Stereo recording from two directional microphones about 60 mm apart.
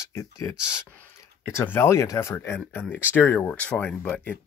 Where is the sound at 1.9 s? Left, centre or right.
Left.